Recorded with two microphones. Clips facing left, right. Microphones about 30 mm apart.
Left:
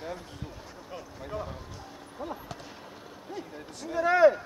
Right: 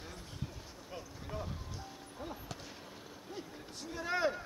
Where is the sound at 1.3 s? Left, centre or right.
Centre.